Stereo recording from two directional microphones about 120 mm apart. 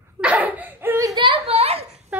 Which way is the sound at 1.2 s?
50° right (ahead or behind).